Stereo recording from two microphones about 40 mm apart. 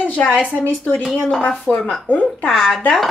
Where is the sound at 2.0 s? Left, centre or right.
Left.